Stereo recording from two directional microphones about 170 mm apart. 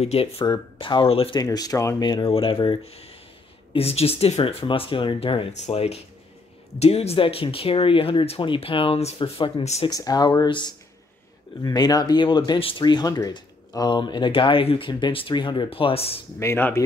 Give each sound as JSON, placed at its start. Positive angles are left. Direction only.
{"t": 0.0, "sound": "speech", "side_deg": 35}
{"t": 9.8, "sound": "speech", "side_deg": 25}
{"t": 16.3, "sound": "speech", "side_deg": 15}